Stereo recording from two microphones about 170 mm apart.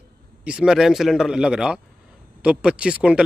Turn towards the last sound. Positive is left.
turn(degrees=-5)  # may be behind; listen again after turning